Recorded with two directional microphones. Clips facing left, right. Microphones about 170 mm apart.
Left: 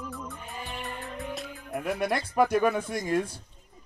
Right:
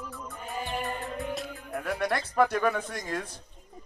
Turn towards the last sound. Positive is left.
turn(degrees=15)  # may be behind; listen again after turning